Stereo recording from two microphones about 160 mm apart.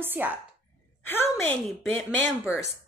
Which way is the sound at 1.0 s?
15° left (ahead or behind).